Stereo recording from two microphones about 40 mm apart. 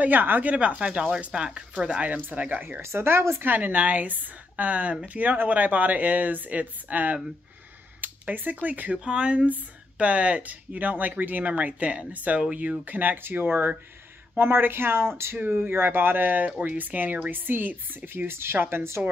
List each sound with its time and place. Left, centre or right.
0.0 s speech: right
0.5 s speech: right
2.0 s speech: right
2.8 s speech: right
3.4 s speech: right
8.0 s a sound: right
8.6 s speech: right
9.0 s speech: right
14.4 s speech: right
15.7 s speech: right